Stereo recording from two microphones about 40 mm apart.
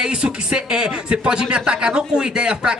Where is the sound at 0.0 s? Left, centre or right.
Right.